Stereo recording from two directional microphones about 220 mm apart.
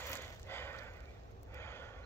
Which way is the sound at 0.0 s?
10° left (ahead or behind).